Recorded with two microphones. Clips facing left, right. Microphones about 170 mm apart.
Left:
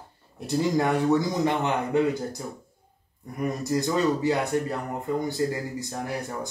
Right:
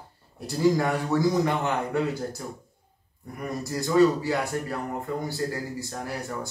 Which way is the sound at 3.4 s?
20° left (ahead or behind).